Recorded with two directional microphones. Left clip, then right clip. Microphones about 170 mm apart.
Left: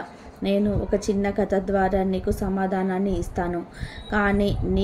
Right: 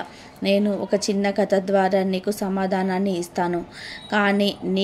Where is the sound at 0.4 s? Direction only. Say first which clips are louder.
Right 3 dB; 15° right (ahead or behind).